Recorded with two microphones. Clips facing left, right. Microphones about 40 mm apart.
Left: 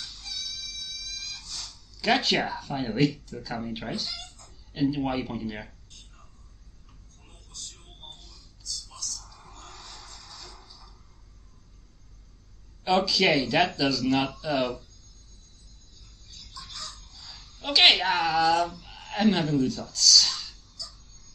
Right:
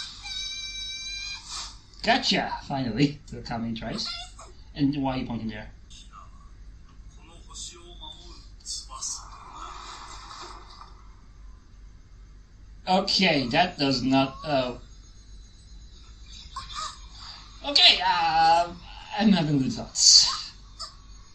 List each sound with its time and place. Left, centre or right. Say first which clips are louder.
0.0 s chicken: right 1 dB; right
2.0 s a man's voice: even; centre
6.1 s a sound: right 9 dB; right
7.5 s a sound: right 1 dB; right
8.0 s a sound: even; centre
8.9 s music: right 2 dB; right
12.8 s speech: even; centre
16.3 s chicken: right 5 dB; right
17.6 s speech: left 1 dB; centre
18.7 s a sound: right 1 dB; centre
18.9 s speech: right 1 dB; centre
20.8 s crow: right 2 dB; right